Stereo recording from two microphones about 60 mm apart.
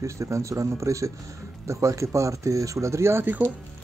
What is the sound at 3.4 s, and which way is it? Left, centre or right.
Speech, right.